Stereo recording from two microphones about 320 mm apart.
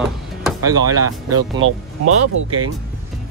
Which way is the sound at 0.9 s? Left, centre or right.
Right.